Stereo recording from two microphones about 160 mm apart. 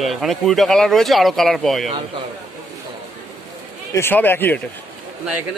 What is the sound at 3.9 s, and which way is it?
Speech, 15° left (ahead or behind).